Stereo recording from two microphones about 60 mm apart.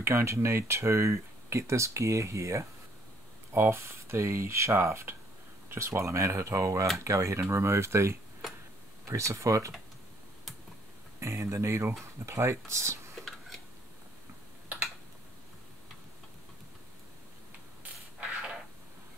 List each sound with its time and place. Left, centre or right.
0.0 s speech: right
11.1 s speech: right